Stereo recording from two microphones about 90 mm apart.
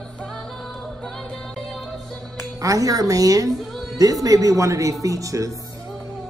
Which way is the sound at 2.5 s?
40° right (ahead or behind).